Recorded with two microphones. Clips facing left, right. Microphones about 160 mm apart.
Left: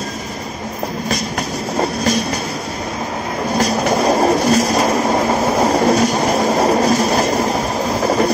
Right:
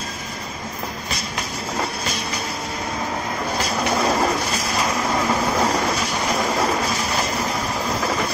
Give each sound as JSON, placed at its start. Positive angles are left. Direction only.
{"t": 3.5, "sound": "train", "side_deg": 40}